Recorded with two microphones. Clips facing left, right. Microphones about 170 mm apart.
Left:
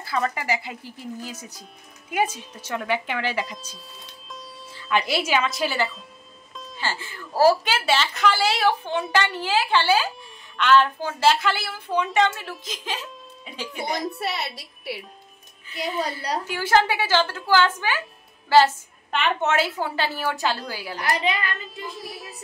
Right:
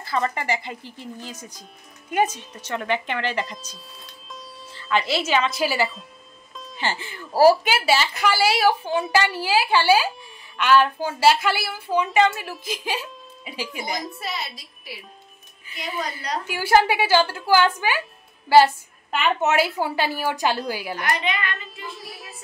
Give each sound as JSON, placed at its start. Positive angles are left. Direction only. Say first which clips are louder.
{"t": 0.0, "sound": "speech", "louder": "right 1 dB", "side_deg": 5}
{"t": 4.7, "sound": "speech", "louder": "right 1 dB", "side_deg": 10}
{"t": 6.8, "sound": "a woman's voice", "louder": "right 3 dB", "side_deg": -20}
{"t": 14.2, "sound": "a woman's voice", "louder": "left 3 dB", "side_deg": 65}
{"t": 15.8, "sound": "a woman's voice", "louder": "left 3 dB", "side_deg": 30}
{"t": 16.4, "sound": "a woman's voice", "louder": "right 3 dB", "side_deg": -10}
{"t": 21.0, "sound": "a woman's voice", "louder": "left 3 dB", "side_deg": 35}
{"t": 21.9, "sound": "speech", "louder": "left 3 dB", "side_deg": 0}